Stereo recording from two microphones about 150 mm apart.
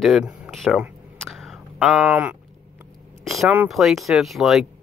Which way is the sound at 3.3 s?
Centre (ahead or behind).